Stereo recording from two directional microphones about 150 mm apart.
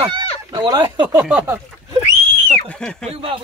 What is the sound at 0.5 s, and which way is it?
Speech, 25° right (ahead or behind).